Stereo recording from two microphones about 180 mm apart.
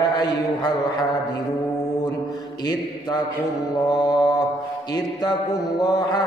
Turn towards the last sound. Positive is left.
turn(degrees=20)  # may be behind; listen again after turning